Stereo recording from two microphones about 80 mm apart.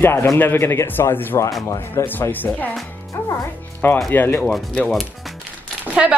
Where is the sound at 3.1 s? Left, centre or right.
Left.